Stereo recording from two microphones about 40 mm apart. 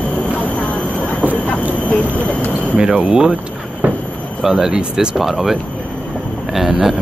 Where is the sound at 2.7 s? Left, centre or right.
Right.